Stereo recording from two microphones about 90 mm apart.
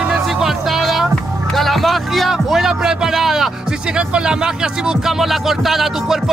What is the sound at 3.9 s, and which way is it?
Speech, 10° right (ahead or behind).